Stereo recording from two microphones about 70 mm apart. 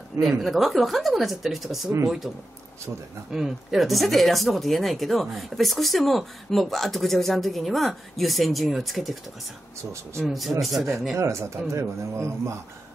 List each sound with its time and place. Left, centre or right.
0.2 s speech: centre
10.2 s speech: centre
11.1 s speech: right